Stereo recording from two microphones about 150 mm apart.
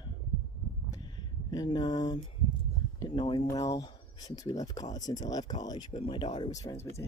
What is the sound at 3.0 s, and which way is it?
Speech, 30° left (ahead or behind).